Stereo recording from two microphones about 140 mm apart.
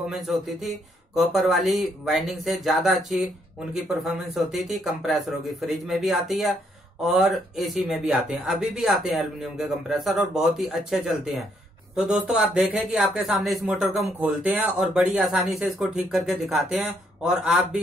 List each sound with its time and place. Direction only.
0.1 s speech: centre (ahead or behind)